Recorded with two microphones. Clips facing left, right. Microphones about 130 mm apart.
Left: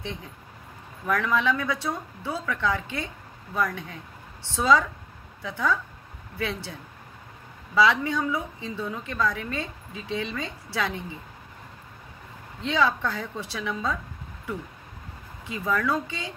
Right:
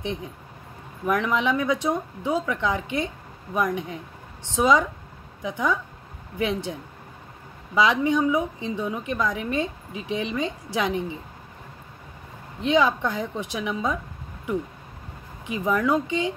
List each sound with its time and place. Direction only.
0.0 s a woman's voice: 15° right (ahead or behind)
12.5 s a woman's voice: 20° right (ahead or behind)
15.4 s a woman's voice: 20° right (ahead or behind)